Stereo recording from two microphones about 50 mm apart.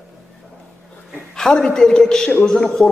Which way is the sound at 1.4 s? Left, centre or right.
Centre.